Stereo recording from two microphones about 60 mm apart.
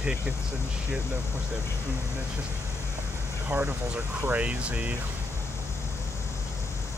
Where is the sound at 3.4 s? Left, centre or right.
Right.